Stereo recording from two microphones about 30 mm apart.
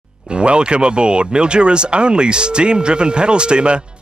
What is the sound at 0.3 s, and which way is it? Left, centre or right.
Speech, right.